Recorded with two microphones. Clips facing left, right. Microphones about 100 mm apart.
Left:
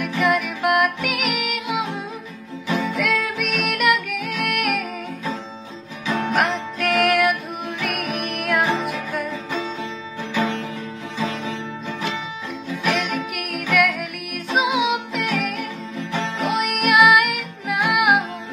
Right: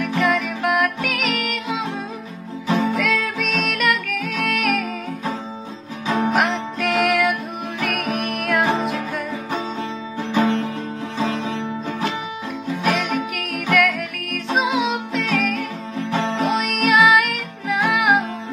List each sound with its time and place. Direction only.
0.2 s music: centre (ahead or behind)
2.7 s music: 35° right (ahead or behind)
3.0 s music: centre (ahead or behind)
6.0 s music: 40° right (ahead or behind)
6.3 s music: centre (ahead or behind)
10.3 s music: 25° right (ahead or behind)
13.3 s music: 5° left (ahead or behind)
16.0 s music: 30° right (ahead or behind)
16.5 s music: 5° left (ahead or behind)